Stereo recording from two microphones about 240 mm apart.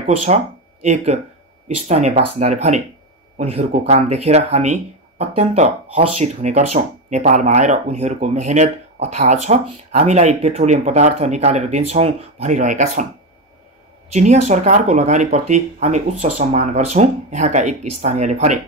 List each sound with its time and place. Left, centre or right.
0.8 s speech: right
14.1 s speech: right